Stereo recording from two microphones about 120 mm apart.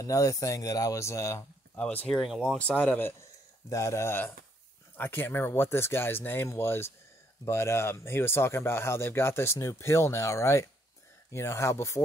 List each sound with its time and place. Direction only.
0.0 s speech: 25° left (ahead or behind)
1.8 s speech: 10° left (ahead or behind)